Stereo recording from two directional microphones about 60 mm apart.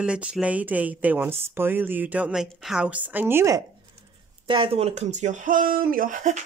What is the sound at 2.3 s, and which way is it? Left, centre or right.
Speech, centre.